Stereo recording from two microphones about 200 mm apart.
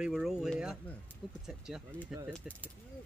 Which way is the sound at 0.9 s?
10° left (ahead or behind).